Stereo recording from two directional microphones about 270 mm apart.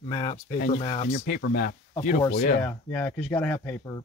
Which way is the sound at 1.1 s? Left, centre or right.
Left.